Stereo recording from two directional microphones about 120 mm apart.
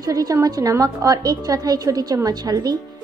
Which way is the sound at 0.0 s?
30° right (ahead or behind).